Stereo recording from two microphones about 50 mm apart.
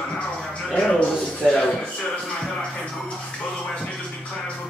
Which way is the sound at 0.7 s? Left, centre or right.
Centre.